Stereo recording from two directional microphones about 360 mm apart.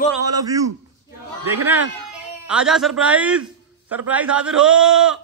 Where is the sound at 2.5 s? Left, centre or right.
Centre.